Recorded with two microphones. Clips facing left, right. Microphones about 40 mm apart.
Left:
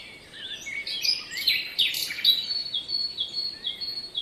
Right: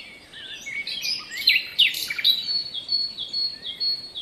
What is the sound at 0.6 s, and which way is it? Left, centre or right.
Bird vocalization, right.